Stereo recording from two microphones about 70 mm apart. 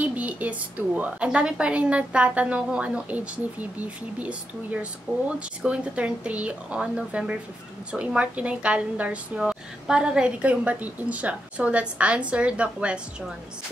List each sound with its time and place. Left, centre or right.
0.0 s a woman's voice: right